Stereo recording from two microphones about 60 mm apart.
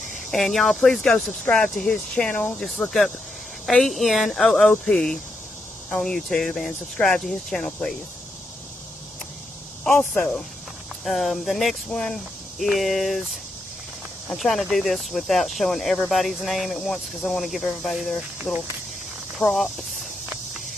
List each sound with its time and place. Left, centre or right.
0.3 s speech: centre
3.6 s speech: centre
10.1 s speech: centre
11.1 s speech: centre
19.4 s speech: left